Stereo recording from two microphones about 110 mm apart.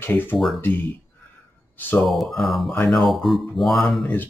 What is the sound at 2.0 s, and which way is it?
Speech, centre (ahead or behind).